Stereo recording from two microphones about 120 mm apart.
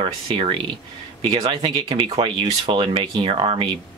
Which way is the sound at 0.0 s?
45° right (ahead or behind).